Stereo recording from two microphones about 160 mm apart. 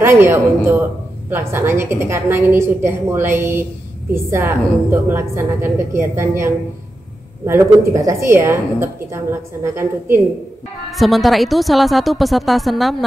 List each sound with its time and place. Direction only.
0.0 s a woman's voice: 15° right (ahead or behind)
10.9 s a woman's voice: centre (ahead or behind)